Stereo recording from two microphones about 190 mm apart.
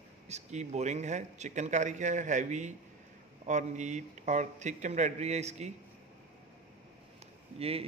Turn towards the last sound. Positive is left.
turn(degrees=-30)  # may be behind; listen again after turning